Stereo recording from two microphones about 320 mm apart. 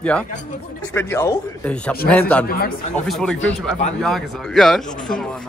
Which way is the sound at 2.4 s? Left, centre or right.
Left.